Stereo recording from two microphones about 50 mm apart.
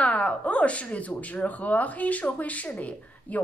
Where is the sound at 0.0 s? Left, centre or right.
Left.